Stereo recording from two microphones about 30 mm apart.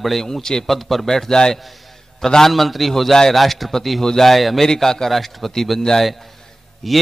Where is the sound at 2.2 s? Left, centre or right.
Centre.